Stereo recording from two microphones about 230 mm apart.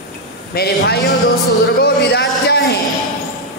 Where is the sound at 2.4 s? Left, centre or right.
Left.